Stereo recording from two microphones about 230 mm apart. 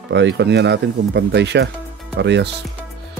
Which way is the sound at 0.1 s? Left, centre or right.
Right.